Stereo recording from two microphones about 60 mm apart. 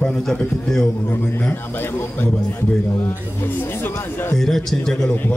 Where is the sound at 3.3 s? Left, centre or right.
Left.